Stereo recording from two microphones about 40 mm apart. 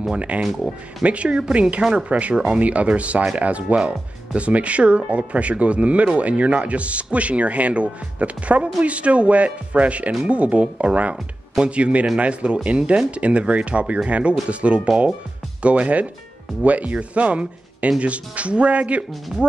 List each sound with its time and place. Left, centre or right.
0.1 s speech: right
0.4 s speech: centre
1.0 s speech: right
2.6 s speech: right